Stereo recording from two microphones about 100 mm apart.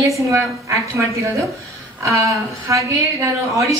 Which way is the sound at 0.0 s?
30° right (ahead or behind).